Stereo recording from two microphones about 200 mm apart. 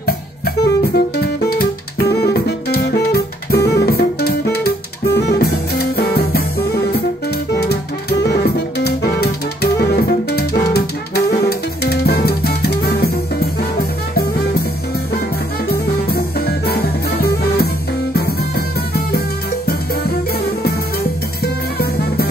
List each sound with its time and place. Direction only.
0.9 s music: 55° left (ahead or behind)
16.1 s music: 50° left (ahead or behind)
21.7 s music: 50° left (ahead or behind)